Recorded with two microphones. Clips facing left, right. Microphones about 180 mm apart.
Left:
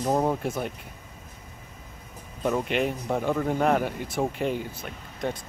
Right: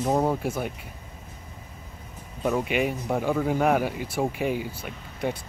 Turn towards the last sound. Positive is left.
turn(degrees=-5)  # may be behind; listen again after turning